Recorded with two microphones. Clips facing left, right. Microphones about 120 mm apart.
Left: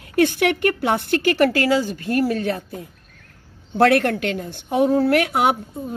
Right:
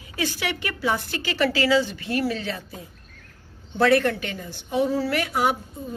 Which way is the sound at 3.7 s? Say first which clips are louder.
Left 3 dB; 60° left (ahead or behind).